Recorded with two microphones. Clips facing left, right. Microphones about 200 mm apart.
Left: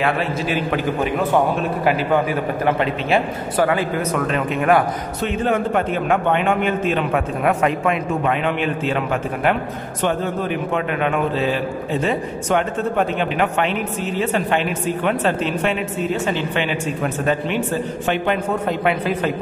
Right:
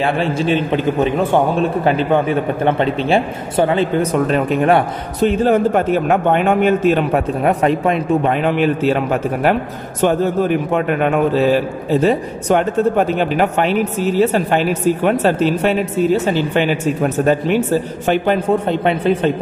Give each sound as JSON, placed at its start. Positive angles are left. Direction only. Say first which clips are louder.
{"t": 0.0, "sound": "a man's voice", "louder": "right 4 dB", "side_deg": -30}